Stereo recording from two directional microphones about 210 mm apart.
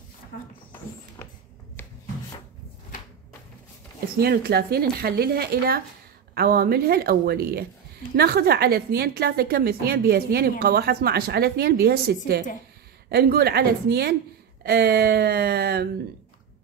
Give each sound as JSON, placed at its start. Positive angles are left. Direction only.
{"t": 4.2, "sound": "a woman's voice", "side_deg": -45}